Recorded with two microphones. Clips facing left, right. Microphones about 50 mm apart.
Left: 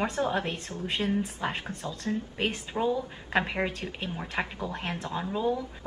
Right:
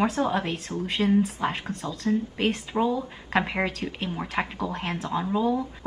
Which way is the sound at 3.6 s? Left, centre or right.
Right.